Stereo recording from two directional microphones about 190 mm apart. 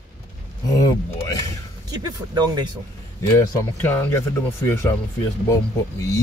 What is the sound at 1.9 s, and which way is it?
Speech, 20° right (ahead or behind).